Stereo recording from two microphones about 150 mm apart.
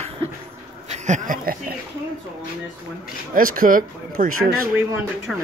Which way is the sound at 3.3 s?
70° right (ahead or behind).